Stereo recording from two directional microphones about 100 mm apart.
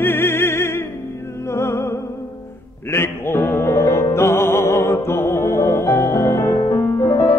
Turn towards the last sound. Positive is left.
turn(degrees=30)  # may be behind; listen again after turning